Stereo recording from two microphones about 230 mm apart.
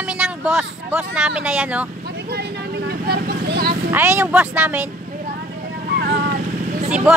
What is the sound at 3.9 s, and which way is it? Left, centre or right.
Speech, centre.